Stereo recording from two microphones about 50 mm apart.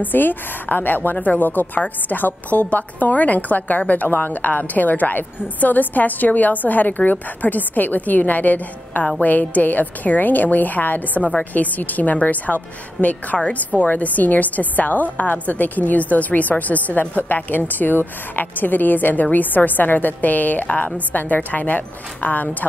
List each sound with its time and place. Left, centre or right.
0.0 s a woman's voice: left